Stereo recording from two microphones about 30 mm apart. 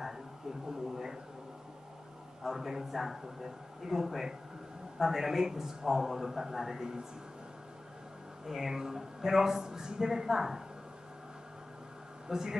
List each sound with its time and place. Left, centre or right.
0.7 s speech: centre
2.4 s speech: centre
8.5 s speech: centre
12.3 s speech: right